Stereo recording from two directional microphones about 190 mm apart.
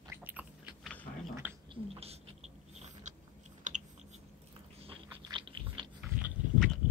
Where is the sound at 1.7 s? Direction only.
30° right (ahead or behind).